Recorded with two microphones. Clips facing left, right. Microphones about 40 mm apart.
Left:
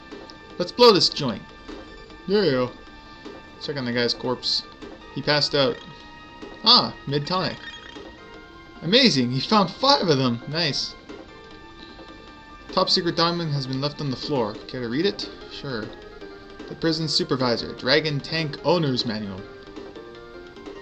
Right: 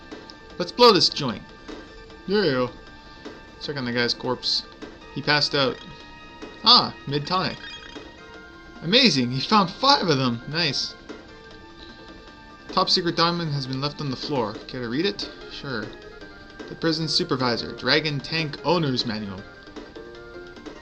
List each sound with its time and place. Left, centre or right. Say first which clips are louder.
0.6 s speech: left 1 dB; centre
8.8 s speech: left 1 dB; centre
12.7 s speech: even; centre
16.8 s speech: even; centre
19.3 s music: left 1 dB; right